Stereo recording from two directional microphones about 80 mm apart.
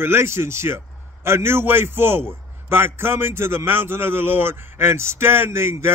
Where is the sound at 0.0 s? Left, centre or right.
Right.